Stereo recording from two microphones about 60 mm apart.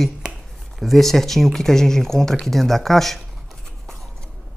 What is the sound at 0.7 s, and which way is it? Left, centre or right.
Speech, centre.